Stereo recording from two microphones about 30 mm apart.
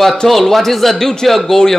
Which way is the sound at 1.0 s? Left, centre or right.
Centre.